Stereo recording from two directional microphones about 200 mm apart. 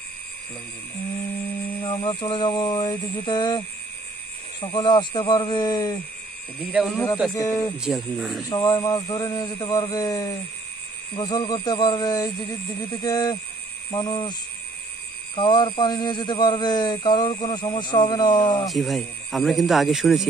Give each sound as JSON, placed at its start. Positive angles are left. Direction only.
{"t": 1.8, "sound": "speech", "side_deg": 20}
{"t": 6.6, "sound": "speech", "side_deg": -5}
{"t": 7.3, "sound": "a man's voice", "side_deg": 15}
{"t": 7.7, "sound": "speech", "side_deg": -5}
{"t": 8.5, "sound": "a man's voice", "side_deg": 15}
{"t": 15.3, "sound": "speech", "side_deg": 25}
{"t": 18.7, "sound": "speech", "side_deg": 0}